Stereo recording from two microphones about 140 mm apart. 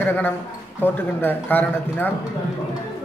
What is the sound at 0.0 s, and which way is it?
A man's voice, 15° left (ahead or behind).